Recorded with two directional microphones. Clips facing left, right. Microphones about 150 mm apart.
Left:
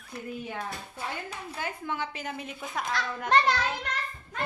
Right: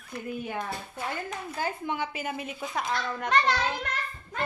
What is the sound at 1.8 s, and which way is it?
A woman's voice, 15° right (ahead or behind).